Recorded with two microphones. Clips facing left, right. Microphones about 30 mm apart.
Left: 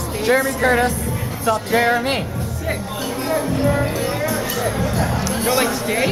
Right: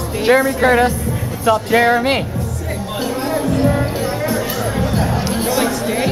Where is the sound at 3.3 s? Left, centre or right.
Centre.